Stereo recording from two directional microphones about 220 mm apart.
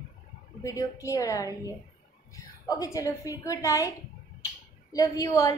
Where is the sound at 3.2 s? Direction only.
15° left (ahead or behind).